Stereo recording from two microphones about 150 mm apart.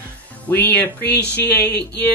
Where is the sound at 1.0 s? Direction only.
90° left.